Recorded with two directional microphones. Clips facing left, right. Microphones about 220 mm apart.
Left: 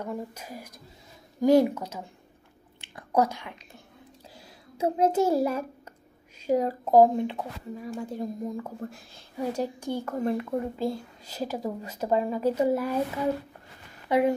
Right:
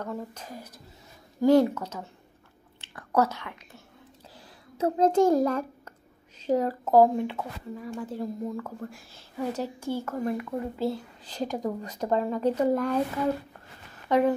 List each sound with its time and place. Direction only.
0.0 s a woman's voice: 10° left (ahead or behind)
2.8 s a sound: 10° left (ahead or behind)
3.2 s a woman's voice: 15° left (ahead or behind)
4.7 s a child's voice: 10° left (ahead or behind)
10.8 s a woman's voice: 10° left (ahead or behind)
14.0 s speech: 10° left (ahead or behind)